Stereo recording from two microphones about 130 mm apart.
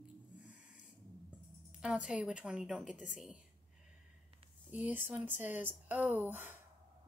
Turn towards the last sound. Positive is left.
turn(degrees=-15)  # may be behind; listen again after turning